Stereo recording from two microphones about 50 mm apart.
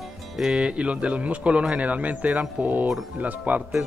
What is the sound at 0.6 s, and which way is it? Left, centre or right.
Speech, right.